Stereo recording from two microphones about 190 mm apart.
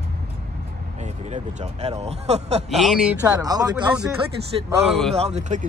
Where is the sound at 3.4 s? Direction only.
20° right (ahead or behind).